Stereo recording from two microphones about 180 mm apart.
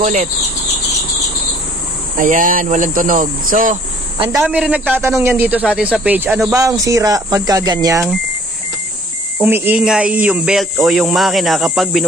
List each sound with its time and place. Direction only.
0.0 s speech: 45° right (ahead or behind)
2.1 s speech: 50° right (ahead or behind)
4.4 s speech: 5° right (ahead or behind)
9.4 s speech: 10° right (ahead or behind)